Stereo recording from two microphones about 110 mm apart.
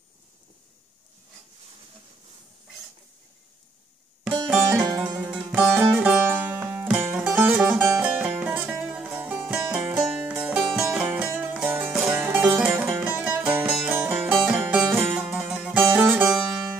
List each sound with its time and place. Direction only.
4.5 s music: 15° right (ahead or behind)
4.8 s music: 35° right (ahead or behind)
5.2 s music: 10° right (ahead or behind)
12.2 s music: 15° right (ahead or behind)